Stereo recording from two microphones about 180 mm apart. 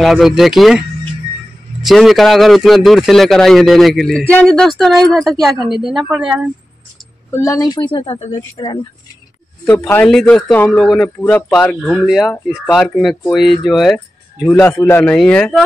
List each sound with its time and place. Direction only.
0.0 s a man's voice: centre (ahead or behind)
1.9 s a man's voice: centre (ahead or behind)
7.3 s a woman's voice: 20° left (ahead or behind)
7.9 s a woman's voice: 30° left (ahead or behind)
9.7 s a man's voice: 15° left (ahead or behind)